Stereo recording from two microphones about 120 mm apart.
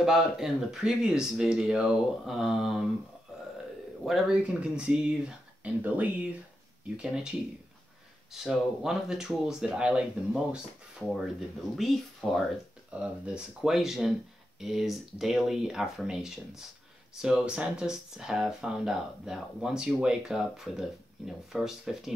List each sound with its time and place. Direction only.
0.0 s speech: 5° right (ahead or behind)
4.0 s speech: centre (ahead or behind)